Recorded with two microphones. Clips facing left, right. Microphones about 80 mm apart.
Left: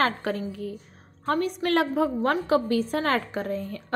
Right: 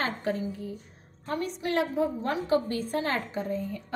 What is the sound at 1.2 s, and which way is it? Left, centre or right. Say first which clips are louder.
A woman's voice: left 6 dB; left.